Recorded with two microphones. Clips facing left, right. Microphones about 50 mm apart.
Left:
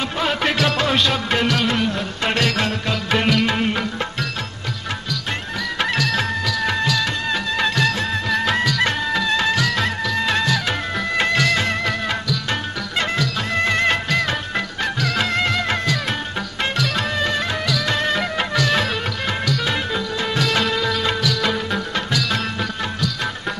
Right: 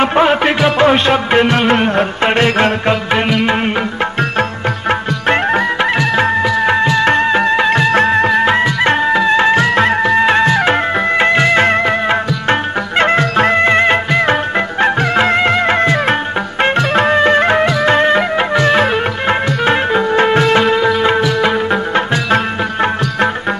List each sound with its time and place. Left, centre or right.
0.0 s music: right
4.2 s music: right
5.8 s music of bollywood: right
7.9 s music: right
8.3 s music: right